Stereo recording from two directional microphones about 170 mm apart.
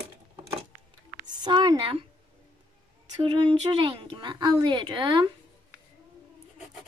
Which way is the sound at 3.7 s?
30° right (ahead or behind).